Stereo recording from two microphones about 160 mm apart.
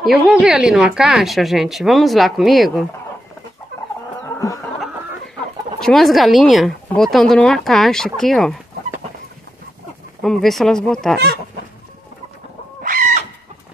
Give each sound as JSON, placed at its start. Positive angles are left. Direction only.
{"t": 0.0, "sound": "speech", "side_deg": -5}
{"t": 5.8, "sound": "speech", "side_deg": 0}
{"t": 10.2, "sound": "speech", "side_deg": 0}
{"t": 12.8, "sound": "bird", "side_deg": -55}